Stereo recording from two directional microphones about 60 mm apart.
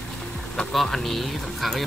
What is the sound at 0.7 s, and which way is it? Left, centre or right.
Speech, centre.